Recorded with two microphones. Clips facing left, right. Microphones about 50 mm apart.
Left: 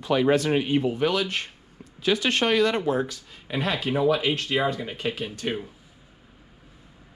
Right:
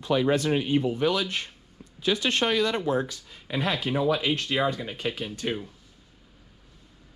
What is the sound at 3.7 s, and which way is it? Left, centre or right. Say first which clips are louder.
Speech: left 4 dB; left.